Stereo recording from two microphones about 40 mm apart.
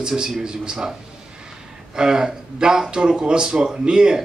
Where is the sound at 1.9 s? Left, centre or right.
Centre.